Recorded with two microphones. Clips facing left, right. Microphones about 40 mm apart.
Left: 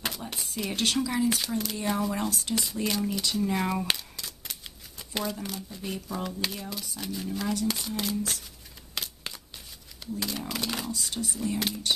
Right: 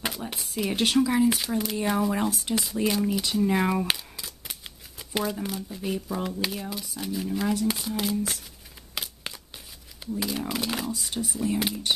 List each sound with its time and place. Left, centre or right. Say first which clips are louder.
0.0 s speech: right 2 dB; centre
8.9 s a sound: right 1 dB; centre
10.1 s speech: right 4 dB; centre
11.0 s speech: right 2 dB; centre